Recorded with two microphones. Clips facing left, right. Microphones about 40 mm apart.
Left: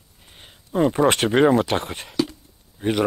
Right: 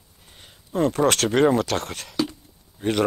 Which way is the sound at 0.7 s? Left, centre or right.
Centre.